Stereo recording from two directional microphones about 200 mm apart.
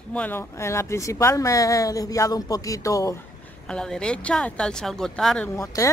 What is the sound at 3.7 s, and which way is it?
Speech, 5° left (ahead or behind).